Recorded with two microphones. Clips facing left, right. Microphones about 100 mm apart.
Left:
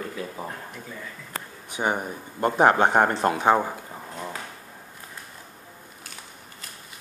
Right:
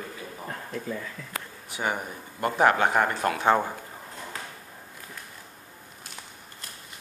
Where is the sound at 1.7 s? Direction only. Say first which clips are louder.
Left 4 dB; 25° left (ahead or behind).